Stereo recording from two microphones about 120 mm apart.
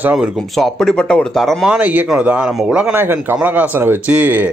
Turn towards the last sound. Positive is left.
turn(degrees=-15)  # may be behind; listen again after turning